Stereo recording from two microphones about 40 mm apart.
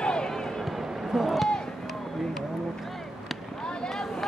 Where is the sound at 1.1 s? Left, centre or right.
Centre.